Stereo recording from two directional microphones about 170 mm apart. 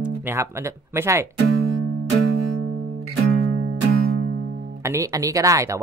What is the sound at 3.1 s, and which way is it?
Music, 60° right (ahead or behind).